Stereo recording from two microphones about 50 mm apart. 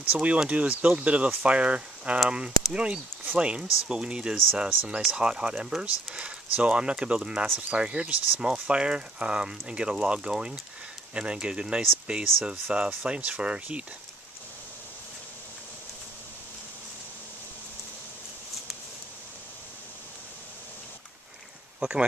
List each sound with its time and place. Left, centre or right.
0.1 s speech: right
5.7 s speech: centre
6.1 s speech: right
21.7 s speech: centre